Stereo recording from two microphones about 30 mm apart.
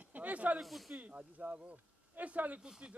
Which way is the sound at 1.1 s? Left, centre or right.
Right.